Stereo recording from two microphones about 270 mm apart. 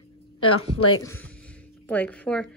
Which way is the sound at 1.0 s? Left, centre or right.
Centre.